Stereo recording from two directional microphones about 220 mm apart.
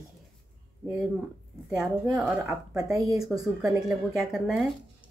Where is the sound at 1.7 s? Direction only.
5° right (ahead or behind).